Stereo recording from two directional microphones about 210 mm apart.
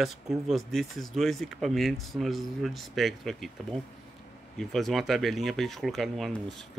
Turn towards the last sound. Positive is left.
turn(degrees=0)  # may be behind; listen again after turning